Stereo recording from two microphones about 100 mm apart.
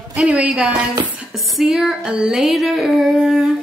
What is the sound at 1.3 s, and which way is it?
Music, centre (ahead or behind).